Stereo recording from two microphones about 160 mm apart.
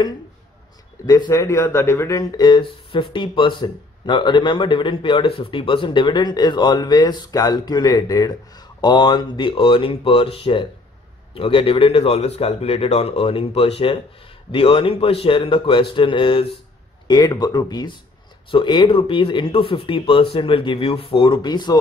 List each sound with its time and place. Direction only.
1.0 s a man's voice: 20° left (ahead or behind)